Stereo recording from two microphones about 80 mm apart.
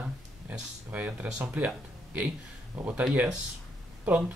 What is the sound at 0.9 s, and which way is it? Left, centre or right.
Speech, centre.